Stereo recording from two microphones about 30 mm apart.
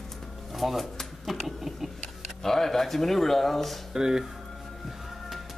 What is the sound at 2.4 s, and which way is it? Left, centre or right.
Speech, centre.